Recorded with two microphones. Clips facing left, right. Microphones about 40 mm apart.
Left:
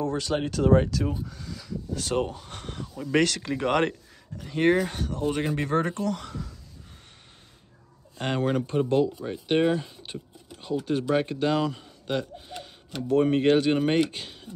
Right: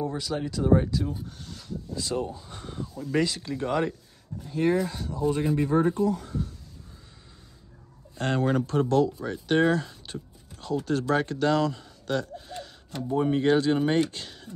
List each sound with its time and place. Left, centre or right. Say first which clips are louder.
0.0 s speech: left 3 dB; left
2.1 s speech: left 5 dB; left
2.9 s speech: left 3 dB; left
3.3 s speech: left 3 dB; left
8.2 s speech: right 1 dB; left
9.0 s speech: even; centre
9.5 s speech: even; left
13.1 s speech: left 2 dB; left; by 14.5 s centre